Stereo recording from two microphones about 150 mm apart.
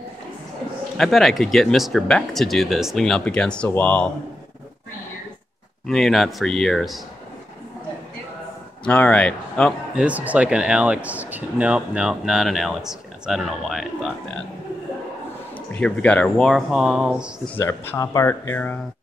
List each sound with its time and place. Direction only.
0.9 s speech: centre (ahead or behind)
5.9 s speech: centre (ahead or behind)
8.8 s speech: 10° left (ahead or behind)
9.9 s speech: 10° right (ahead or behind)
15.7 s speech: 10° left (ahead or behind)
17.6 s speech: 15° left (ahead or behind)